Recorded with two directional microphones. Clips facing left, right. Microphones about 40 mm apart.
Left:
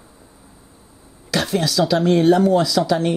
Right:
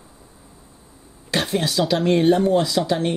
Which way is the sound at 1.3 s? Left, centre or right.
Right.